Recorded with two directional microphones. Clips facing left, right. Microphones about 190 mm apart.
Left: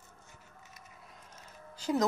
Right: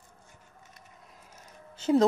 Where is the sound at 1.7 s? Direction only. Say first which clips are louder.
Right 7 dB; 25° right (ahead or behind).